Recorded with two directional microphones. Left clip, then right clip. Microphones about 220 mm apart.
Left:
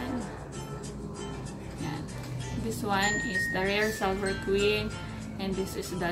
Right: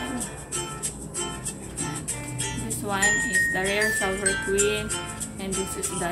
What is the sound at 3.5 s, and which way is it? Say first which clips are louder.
Speech: right 4 dB; centre (ahead or behind).